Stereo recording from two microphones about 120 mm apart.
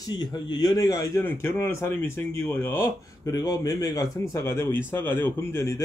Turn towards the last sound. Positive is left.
turn(degrees=25)  # may be behind; listen again after turning